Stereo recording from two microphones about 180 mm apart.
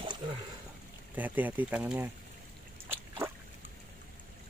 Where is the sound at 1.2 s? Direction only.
10° right (ahead or behind).